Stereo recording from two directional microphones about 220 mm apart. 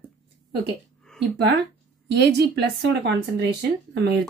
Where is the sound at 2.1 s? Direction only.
50° right (ahead or behind).